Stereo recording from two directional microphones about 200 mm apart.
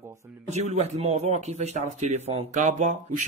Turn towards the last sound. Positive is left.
turn(degrees=-40)  # may be behind; listen again after turning